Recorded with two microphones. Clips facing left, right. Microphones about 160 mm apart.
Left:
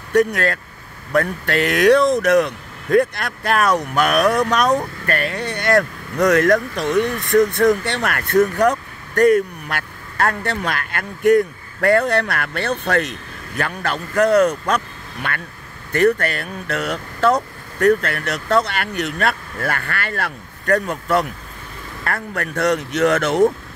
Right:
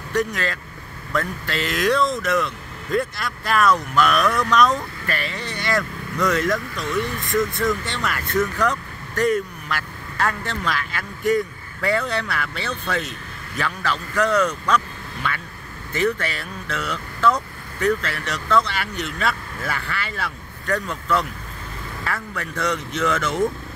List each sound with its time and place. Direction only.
0.1 s speech: 60° left (ahead or behind)
13.6 s a man's voice: 50° left (ahead or behind); by 23.4 s 70° left (ahead or behind)